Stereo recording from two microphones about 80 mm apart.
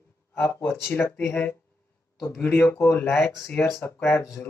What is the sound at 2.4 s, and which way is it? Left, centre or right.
Speech, left.